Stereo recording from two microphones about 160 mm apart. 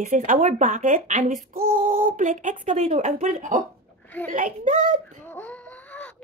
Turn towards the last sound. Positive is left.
turn(degrees=10)  # may be behind; listen again after turning